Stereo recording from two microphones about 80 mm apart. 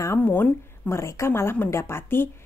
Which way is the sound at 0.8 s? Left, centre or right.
Left.